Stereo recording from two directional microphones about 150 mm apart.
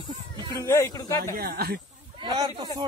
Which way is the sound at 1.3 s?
80° right.